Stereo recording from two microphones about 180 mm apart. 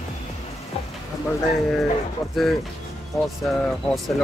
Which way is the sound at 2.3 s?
Centre (ahead or behind).